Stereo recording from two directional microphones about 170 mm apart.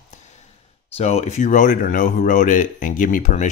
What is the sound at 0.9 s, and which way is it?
A man's voice, 40° left (ahead or behind).